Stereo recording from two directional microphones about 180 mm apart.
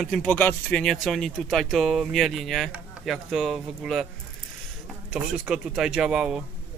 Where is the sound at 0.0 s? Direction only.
Centre (ahead or behind).